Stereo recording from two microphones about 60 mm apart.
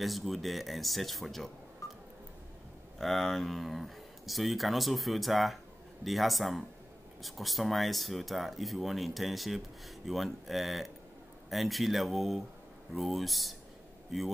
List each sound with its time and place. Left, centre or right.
0.0 s speech: centre
1.8 s telephone dialing: left
3.0 s speech: centre